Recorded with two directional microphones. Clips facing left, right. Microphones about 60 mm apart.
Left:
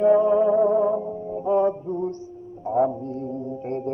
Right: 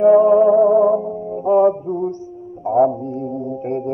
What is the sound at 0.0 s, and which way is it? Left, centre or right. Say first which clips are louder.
Music: right 6 dB; right.